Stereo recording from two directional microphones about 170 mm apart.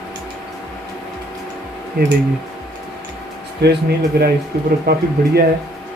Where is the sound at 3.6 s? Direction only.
75° right (ahead or behind).